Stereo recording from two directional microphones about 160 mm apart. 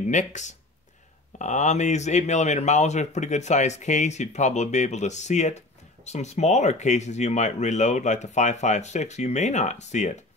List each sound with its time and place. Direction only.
0.0 s speech: 50° left (ahead or behind)